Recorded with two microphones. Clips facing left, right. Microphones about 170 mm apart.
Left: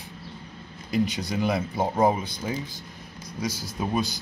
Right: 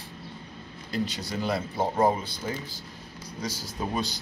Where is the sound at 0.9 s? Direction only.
15° left (ahead or behind).